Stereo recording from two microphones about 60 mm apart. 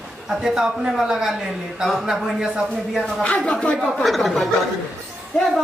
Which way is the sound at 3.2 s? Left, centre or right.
Centre.